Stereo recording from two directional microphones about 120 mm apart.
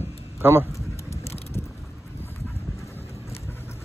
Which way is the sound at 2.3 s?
20° left (ahead or behind).